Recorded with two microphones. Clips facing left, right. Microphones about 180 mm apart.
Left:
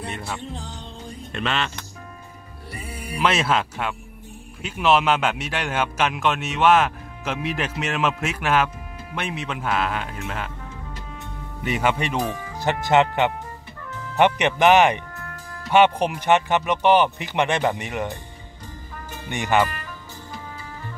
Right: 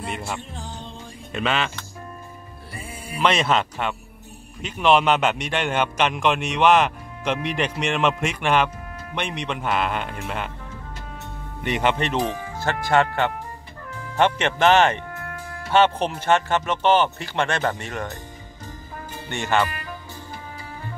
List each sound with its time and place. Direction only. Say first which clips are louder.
1.3 s a man's voice: right 2 dB; centre (ahead or behind)
3.2 s a man's voice: right 1 dB; 5° left (ahead or behind)
11.6 s speech: right 1 dB; 5° left (ahead or behind)
12.5 s speech: left 2 dB; 20° left (ahead or behind)
15.0 s music: right 3 dB; 55° right (ahead or behind)
15.7 s speech: left 2 dB; 15° left (ahead or behind)
19.2 s speech: left 2 dB; 15° left (ahead or behind)